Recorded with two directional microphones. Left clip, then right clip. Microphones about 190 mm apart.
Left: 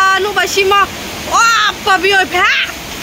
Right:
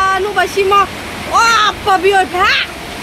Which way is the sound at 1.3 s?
5° right (ahead or behind).